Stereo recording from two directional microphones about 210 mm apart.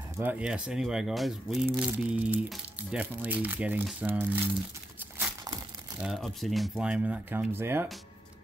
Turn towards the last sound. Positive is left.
turn(degrees=-10)  # may be behind; listen again after turning